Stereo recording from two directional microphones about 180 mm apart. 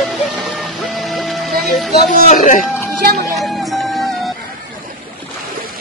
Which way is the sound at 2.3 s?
45° left (ahead or behind).